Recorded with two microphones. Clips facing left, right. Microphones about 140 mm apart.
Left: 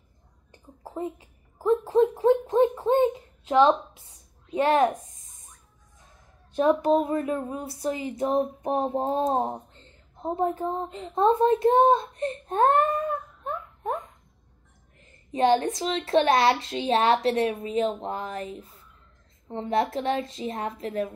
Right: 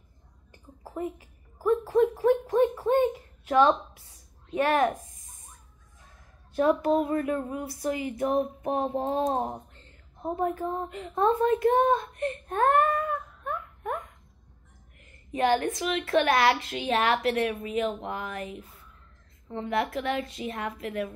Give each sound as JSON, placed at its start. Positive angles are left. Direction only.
{"t": 0.5, "sound": "a sound", "side_deg": 25}
{"t": 4.6, "sound": "a woman's voice", "side_deg": 25}
{"t": 6.5, "sound": "a woman's voice", "side_deg": 20}